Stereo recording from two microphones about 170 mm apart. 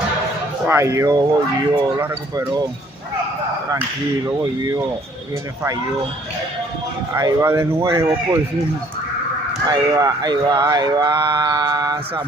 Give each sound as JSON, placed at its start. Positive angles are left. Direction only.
{"t": 0.7, "sound": "speech", "side_deg": -15}
{"t": 4.3, "sound": "speech", "side_deg": -20}
{"t": 7.2, "sound": "speech", "side_deg": -20}
{"t": 9.7, "sound": "speech", "side_deg": -20}